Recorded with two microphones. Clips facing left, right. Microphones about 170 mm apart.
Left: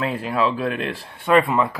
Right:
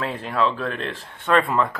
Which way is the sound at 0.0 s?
10° left (ahead or behind).